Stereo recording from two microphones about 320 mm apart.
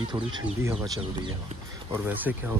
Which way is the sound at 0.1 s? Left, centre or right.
Centre.